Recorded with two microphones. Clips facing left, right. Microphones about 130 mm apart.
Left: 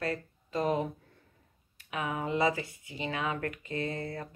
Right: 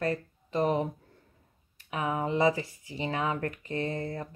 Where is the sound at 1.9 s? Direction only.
30° right (ahead or behind).